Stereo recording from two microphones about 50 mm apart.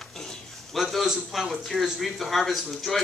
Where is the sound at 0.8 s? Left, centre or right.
Centre.